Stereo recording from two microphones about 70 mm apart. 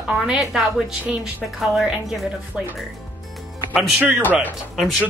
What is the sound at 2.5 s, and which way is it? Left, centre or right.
A woman's voice, centre.